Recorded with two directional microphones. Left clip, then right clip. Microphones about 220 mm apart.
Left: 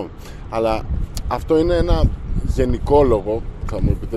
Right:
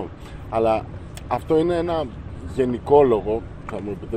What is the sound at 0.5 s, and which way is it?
Speech, 30° left (ahead or behind).